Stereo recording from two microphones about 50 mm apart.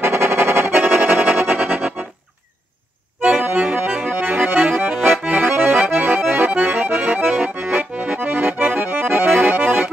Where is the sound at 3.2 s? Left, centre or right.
Right.